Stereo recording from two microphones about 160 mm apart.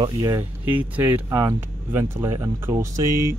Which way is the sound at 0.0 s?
20° right (ahead or behind).